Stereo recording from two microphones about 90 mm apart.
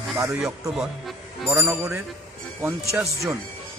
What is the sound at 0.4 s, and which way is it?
Speech, 5° right (ahead or behind).